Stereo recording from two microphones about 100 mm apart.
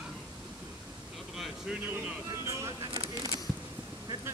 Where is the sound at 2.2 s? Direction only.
40° right (ahead or behind).